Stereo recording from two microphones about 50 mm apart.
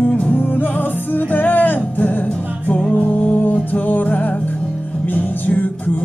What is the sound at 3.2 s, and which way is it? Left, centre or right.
Music, left.